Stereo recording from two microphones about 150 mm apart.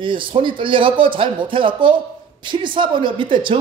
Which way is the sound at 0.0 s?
35° right (ahead or behind).